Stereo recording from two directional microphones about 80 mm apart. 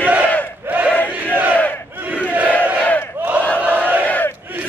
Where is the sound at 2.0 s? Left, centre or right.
Centre.